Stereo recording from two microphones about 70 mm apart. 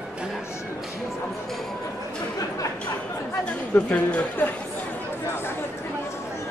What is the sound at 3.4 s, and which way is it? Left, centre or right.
Speech, centre.